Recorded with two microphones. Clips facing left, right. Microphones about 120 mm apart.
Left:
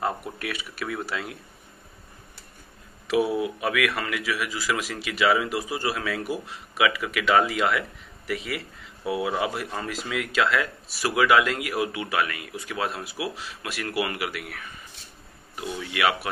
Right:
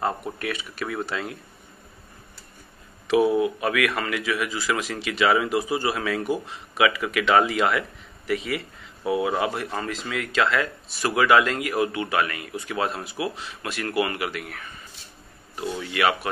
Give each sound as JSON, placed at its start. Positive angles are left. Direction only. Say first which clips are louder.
{"t": 0.0, "sound": "speech", "louder": "right 2 dB", "side_deg": 5}
{"t": 3.1, "sound": "speech", "louder": "right 4 dB", "side_deg": 5}